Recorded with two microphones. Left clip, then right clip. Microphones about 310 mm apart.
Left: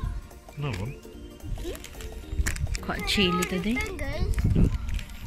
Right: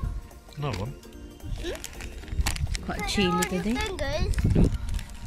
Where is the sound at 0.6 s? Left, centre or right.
Right.